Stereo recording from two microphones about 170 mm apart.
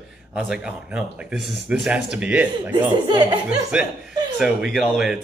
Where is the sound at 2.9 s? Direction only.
25° right (ahead or behind).